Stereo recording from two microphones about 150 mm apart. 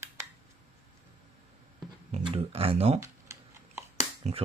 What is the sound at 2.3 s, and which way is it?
Speech, 40° right (ahead or behind).